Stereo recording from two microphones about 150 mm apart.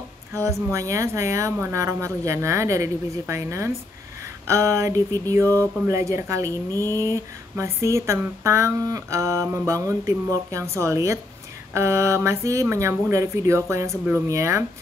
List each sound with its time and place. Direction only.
0.3 s speech: 20° right (ahead or behind)
6.7 s a sound: 15° left (ahead or behind)
7.0 s speech: 20° right (ahead or behind)